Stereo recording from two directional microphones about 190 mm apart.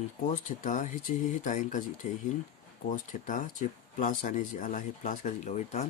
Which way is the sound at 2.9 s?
45° left (ahead or behind).